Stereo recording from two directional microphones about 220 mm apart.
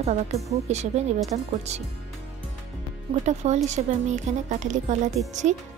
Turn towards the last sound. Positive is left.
turn(degrees=-35)  # may be behind; listen again after turning